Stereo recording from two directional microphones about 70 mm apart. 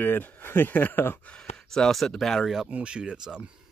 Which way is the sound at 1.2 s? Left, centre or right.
Centre.